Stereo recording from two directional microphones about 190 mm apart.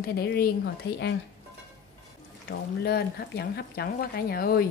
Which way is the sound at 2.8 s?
55° left (ahead or behind).